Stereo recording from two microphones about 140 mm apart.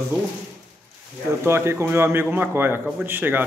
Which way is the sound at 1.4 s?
20° right (ahead or behind).